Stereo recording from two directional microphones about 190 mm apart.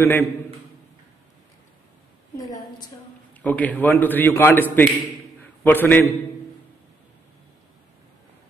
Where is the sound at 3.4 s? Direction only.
10° left (ahead or behind).